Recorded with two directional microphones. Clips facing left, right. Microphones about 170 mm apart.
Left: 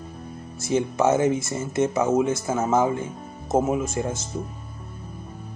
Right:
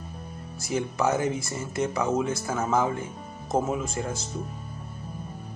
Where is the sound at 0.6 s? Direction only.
25° left (ahead or behind).